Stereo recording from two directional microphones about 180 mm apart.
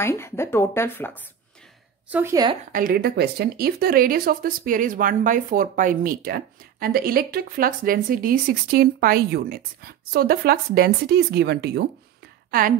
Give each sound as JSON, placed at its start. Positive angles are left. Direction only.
{"t": 0.0, "sound": "speech", "side_deg": 15}
{"t": 2.0, "sound": "a woman's voice", "side_deg": -10}
{"t": 2.7, "sound": "speech", "side_deg": -50}
{"t": 12.4, "sound": "a sound", "side_deg": -55}